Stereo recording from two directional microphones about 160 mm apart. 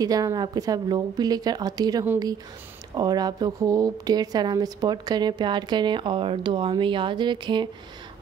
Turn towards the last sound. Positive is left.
turn(degrees=-30)  # may be behind; listen again after turning